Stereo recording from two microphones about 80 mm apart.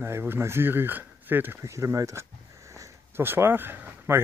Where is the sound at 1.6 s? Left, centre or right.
Right.